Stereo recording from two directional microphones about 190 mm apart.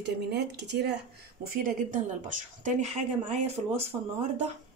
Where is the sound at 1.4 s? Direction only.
50° right (ahead or behind).